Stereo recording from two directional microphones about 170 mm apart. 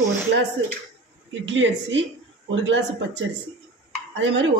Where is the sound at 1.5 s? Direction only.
90° right.